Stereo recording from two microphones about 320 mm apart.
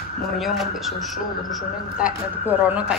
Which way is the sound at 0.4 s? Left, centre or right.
Centre.